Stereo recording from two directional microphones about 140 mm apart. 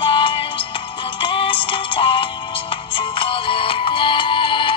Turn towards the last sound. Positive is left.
turn(degrees=35)  # may be behind; listen again after turning